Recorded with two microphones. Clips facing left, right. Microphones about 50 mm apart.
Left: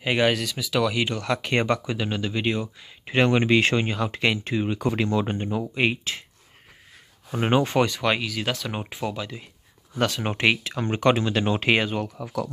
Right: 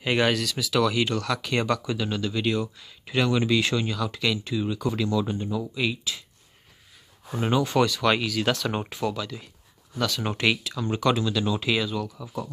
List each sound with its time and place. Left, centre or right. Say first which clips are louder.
0.0 s speech: left 1 dB; centre; by 6.2 s left
7.3 s speech: left 2 dB; left
8.0 s speech: right 1 dB; centre
9.9 s speech: left 2 dB; left